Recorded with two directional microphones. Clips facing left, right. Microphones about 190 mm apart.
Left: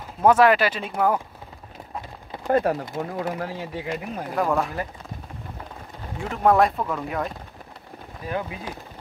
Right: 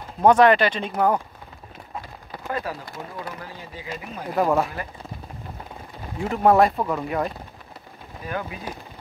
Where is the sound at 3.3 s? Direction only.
75° left (ahead or behind).